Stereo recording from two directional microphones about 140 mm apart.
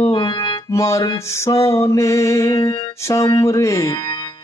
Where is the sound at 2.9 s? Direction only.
20° left (ahead or behind); by 4.4 s 35° left (ahead or behind).